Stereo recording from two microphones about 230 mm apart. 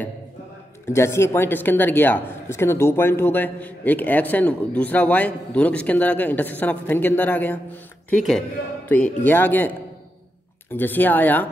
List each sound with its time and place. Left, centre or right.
0.8 s speech: centre